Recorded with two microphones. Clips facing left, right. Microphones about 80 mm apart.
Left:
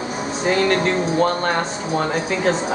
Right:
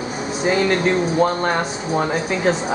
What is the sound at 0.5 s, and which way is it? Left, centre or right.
Speech, centre.